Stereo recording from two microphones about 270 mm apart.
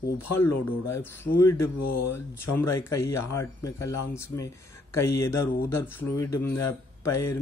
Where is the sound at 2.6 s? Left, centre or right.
Centre.